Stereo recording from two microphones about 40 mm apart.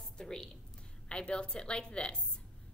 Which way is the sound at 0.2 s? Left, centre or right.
Centre.